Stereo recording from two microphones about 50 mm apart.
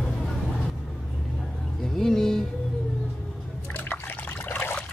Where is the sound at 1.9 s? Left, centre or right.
Centre.